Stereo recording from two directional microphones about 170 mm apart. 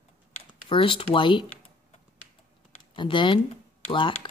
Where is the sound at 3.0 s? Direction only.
30° left (ahead or behind).